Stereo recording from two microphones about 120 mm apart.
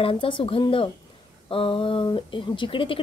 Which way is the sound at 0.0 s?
50° left (ahead or behind).